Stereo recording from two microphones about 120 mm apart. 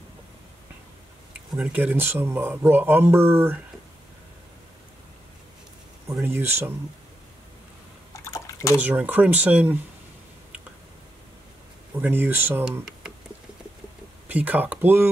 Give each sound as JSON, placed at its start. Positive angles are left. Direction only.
{"t": 1.6, "sound": "speech", "side_deg": -15}
{"t": 6.2, "sound": "speech", "side_deg": -20}
{"t": 8.1, "sound": "liquid", "side_deg": 25}
{"t": 8.8, "sound": "speech", "side_deg": -15}
{"t": 12.0, "sound": "speech", "side_deg": -15}
{"t": 14.2, "sound": "speech", "side_deg": -15}